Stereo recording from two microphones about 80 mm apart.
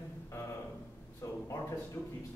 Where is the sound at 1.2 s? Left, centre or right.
Left.